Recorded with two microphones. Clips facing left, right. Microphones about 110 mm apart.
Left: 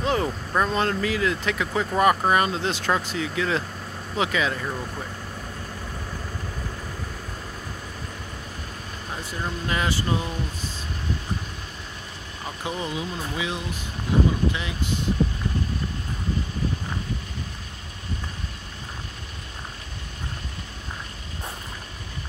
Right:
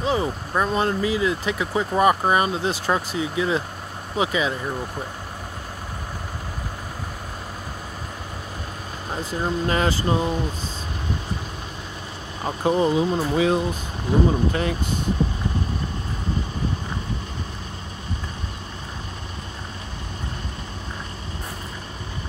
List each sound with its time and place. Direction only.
0.0 s speech: 5° right (ahead or behind)
9.1 s speech: 30° right (ahead or behind)
12.4 s speech: 35° right (ahead or behind)